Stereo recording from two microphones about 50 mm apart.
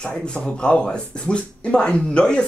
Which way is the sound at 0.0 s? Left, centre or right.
Centre.